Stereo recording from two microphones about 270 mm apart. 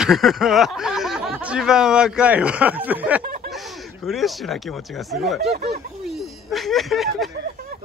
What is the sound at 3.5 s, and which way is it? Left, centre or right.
Speech, centre.